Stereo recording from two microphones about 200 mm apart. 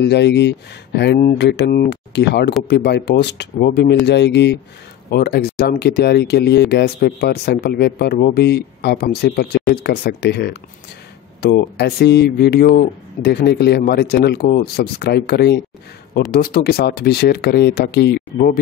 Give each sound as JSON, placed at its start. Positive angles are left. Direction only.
{"t": 0.0, "sound": "speech", "side_deg": 60}